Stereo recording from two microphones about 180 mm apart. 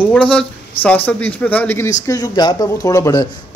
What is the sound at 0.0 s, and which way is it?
A man's voice, 5° left (ahead or behind).